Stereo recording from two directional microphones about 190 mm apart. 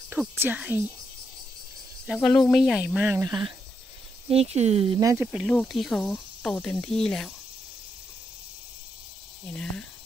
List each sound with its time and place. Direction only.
0.1 s speech: 10° right (ahead or behind)
2.1 s speech: 5° left (ahead or behind); by 5.0 s 30° right (ahead or behind)
5.0 s speech: 10° right (ahead or behind); by 7.3 s 5° left (ahead or behind)
9.5 s speech: 5° left (ahead or behind)